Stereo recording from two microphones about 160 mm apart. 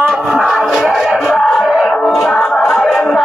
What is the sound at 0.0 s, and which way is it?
Music, centre (ahead or behind).